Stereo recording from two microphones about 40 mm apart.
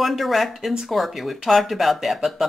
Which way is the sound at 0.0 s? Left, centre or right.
Centre.